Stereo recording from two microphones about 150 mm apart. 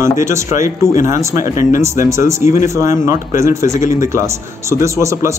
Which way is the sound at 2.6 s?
20° right (ahead or behind).